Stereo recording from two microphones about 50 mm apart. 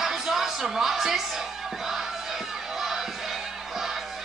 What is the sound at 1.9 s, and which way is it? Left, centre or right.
Crowd, centre.